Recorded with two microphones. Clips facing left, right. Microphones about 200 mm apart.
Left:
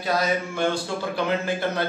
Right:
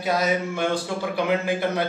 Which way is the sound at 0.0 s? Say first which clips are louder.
Right 1 dB; 20° right (ahead or behind).